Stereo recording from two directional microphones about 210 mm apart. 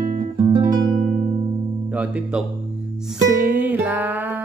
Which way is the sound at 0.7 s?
20° right (ahead or behind).